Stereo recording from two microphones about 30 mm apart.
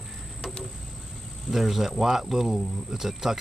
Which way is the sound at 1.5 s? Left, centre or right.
Centre.